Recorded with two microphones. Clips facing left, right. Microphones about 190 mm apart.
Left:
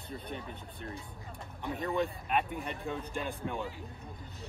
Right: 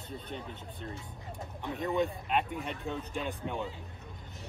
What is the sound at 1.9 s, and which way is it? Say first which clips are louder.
Speech: right 2 dB; centre (ahead or behind).